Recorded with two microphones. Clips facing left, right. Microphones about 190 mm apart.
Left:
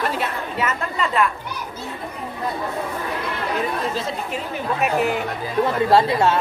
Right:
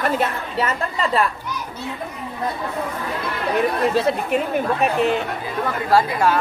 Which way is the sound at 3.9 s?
60° right (ahead or behind).